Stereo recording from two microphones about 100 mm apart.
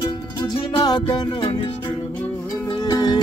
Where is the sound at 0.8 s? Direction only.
50° left (ahead or behind).